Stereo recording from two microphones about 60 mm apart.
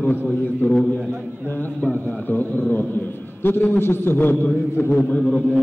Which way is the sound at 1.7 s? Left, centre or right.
Left.